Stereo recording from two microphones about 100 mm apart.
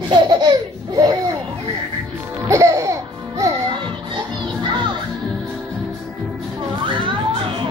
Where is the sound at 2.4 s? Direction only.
30° right (ahead or behind).